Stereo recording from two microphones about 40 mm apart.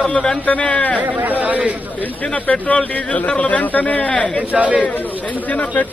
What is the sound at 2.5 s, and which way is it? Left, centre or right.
Speech, left.